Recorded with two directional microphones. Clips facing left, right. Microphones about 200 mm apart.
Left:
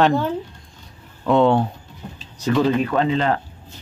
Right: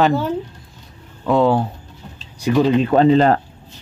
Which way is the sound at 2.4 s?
15° right (ahead or behind).